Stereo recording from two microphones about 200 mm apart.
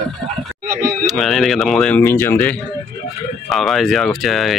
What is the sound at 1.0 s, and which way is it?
Speech, centre (ahead or behind).